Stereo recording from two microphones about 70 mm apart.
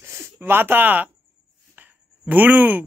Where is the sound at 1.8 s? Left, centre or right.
Right.